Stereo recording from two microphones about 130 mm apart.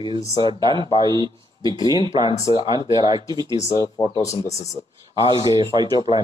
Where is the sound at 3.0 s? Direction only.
30° right (ahead or behind).